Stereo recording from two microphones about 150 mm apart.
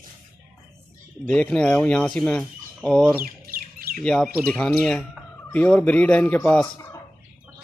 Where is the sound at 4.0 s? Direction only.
5° left (ahead or behind).